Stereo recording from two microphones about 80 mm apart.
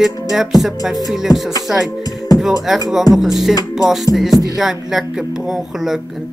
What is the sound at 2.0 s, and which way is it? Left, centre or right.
Music, left.